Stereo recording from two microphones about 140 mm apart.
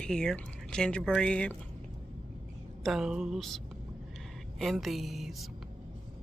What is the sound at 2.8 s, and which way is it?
Speech, centre (ahead or behind).